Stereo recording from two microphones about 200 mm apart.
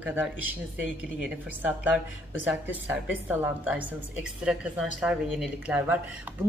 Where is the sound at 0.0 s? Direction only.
5° right (ahead or behind).